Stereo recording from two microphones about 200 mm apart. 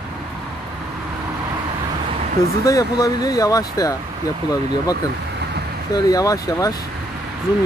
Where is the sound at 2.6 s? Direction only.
15° left (ahead or behind).